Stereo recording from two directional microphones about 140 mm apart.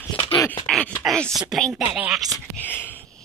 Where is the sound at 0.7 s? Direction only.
5° left (ahead or behind).